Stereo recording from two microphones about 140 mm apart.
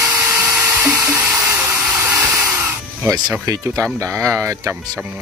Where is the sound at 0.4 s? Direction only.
10° right (ahead or behind).